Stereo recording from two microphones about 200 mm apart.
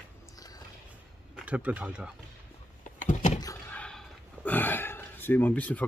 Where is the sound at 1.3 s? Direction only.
5° right (ahead or behind).